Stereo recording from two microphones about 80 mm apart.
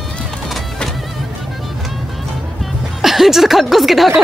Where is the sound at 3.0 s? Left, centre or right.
Centre.